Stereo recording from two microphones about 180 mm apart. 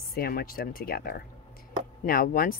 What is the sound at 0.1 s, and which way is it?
Speech, 55° left (ahead or behind).